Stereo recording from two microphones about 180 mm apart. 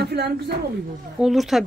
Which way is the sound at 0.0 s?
65° right (ahead or behind).